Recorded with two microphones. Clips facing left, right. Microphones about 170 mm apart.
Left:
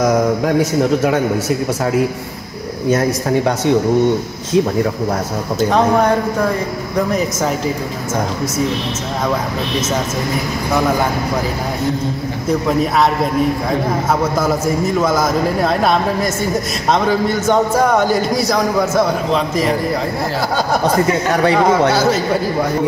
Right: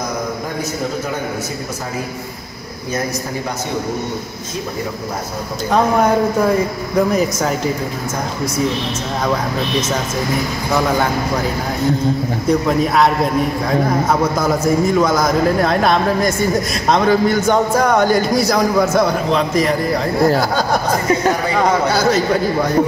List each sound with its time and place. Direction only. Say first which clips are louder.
0.0 s a man's voice: left 9 dB; 85° left
7.1 s a man's voice: right 1 dB; centre (ahead or behind)
12.4 s a man's voice: even; centre (ahead or behind)
14.4 s a man's voice: right 1 dB; 5° left (ahead or behind)
21.6 s a man's voice: left 2 dB; 5° left (ahead or behind)